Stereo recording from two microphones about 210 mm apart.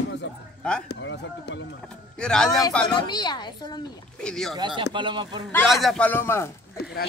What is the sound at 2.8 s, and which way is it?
Speech, 20° left (ahead or behind).